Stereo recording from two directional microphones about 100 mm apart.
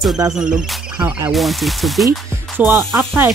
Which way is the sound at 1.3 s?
Centre (ahead or behind).